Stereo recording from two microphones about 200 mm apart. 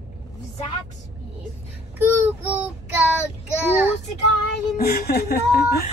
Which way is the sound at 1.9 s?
10° right (ahead or behind).